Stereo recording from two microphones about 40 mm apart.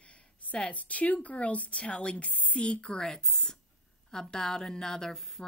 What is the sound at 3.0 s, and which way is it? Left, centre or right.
A woman's voice, centre.